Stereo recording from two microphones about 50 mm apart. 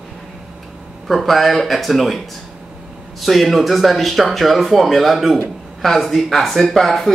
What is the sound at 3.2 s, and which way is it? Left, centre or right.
Speech, centre.